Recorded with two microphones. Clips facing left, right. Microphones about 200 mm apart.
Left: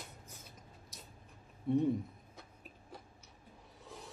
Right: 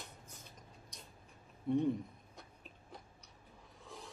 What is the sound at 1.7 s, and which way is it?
Speech, centre (ahead or behind).